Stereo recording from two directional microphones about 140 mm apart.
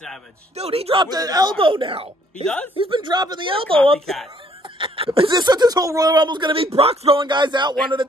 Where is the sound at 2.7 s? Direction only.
40° right (ahead or behind).